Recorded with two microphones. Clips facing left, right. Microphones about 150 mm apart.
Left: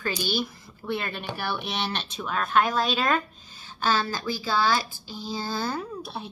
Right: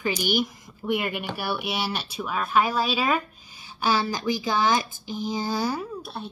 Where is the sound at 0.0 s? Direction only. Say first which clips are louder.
Right 3 dB; 15° right (ahead or behind).